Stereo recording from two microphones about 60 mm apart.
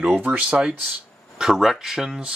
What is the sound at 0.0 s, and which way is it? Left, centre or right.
Speech, right.